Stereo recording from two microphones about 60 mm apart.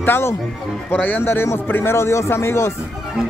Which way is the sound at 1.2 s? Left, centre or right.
Left.